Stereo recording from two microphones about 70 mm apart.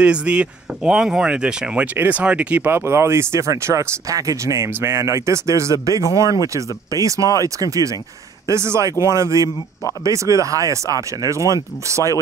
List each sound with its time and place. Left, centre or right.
0.0 s speech: centre
2.6 s speech: right
4.7 s speech: right
8.5 s speech: right